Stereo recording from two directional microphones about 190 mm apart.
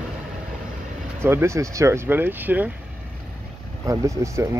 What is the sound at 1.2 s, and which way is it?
Speech, 15° right (ahead or behind).